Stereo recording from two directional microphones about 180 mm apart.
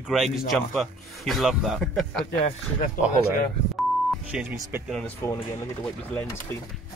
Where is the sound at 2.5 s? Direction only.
45° left (ahead or behind).